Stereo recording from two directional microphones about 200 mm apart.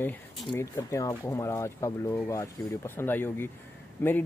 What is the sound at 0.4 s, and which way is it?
Speech, 20° left (ahead or behind).